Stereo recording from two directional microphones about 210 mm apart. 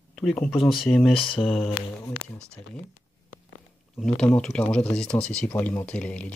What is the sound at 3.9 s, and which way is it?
Speech, centre (ahead or behind).